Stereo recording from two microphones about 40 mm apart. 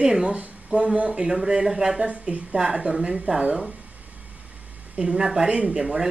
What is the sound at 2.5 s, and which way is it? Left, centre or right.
Speech, centre.